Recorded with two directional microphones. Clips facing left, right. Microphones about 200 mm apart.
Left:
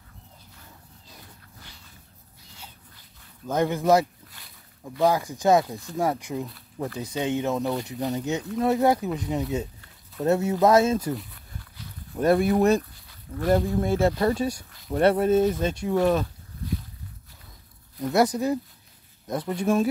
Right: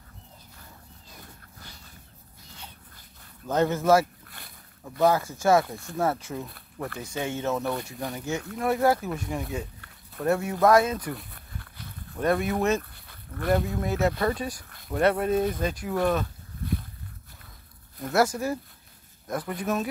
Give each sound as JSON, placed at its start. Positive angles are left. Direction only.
{"t": 3.4, "sound": "speech", "side_deg": 15}
{"t": 11.1, "sound": "a sound", "side_deg": -55}
{"t": 12.2, "sound": "speech", "side_deg": 35}
{"t": 12.9, "sound": "a sound", "side_deg": -55}
{"t": 13.5, "sound": "speech", "side_deg": 30}
{"t": 18.0, "sound": "speech", "side_deg": 20}